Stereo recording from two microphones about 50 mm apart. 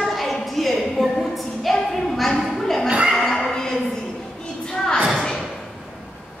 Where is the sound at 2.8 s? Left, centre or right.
Right.